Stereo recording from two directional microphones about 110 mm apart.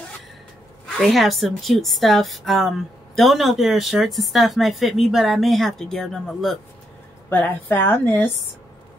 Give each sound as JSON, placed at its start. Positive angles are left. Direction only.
{"t": 0.8, "sound": "speech", "side_deg": 0}
{"t": 7.2, "sound": "a woman's voice", "side_deg": 15}